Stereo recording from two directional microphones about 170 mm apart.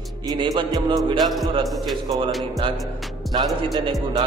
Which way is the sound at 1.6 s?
Centre (ahead or behind).